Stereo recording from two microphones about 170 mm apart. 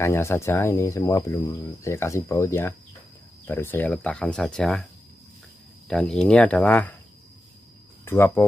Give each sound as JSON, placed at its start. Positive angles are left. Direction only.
{"t": 0.0, "sound": "speech", "side_deg": 15}
{"t": 5.9, "sound": "speech", "side_deg": 5}
{"t": 8.0, "sound": "speech", "side_deg": 15}